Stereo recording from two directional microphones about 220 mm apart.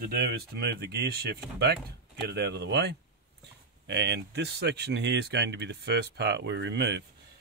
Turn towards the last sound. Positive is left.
turn(degrees=-50)  # may be behind; listen again after turning